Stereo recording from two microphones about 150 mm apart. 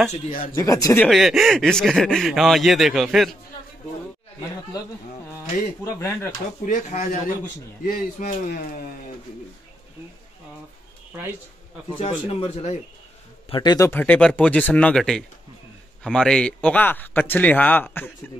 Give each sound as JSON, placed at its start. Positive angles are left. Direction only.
{"t": 0.1, "sound": "speech", "side_deg": 65}
{"t": 0.6, "sound": "a man's voice", "side_deg": 25}
{"t": 0.9, "sound": "speech", "side_deg": 0}
{"t": 6.6, "sound": "speech", "side_deg": 55}
{"t": 12.0, "sound": "speech", "side_deg": 40}
{"t": 13.5, "sound": "a man's voice", "side_deg": 30}
{"t": 13.8, "sound": "a man's voice", "side_deg": 10}